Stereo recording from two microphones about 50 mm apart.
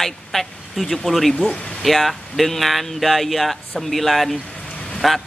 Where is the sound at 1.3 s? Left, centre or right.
Centre.